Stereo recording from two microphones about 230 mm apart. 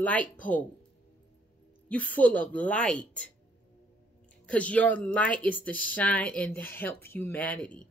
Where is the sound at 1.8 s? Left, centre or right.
Centre.